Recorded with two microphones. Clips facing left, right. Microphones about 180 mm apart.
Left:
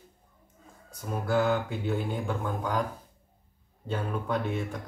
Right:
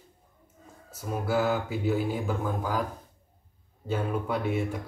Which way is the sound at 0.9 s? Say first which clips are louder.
Even; 5° right (ahead or behind).